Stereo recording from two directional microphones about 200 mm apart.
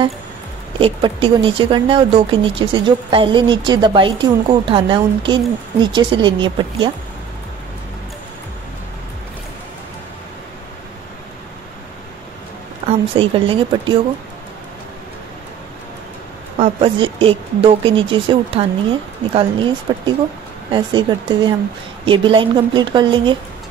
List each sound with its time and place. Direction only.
0.7 s speech: 25° right (ahead or behind)
12.8 s speech: 25° right (ahead or behind)
16.5 s speech: 30° right (ahead or behind)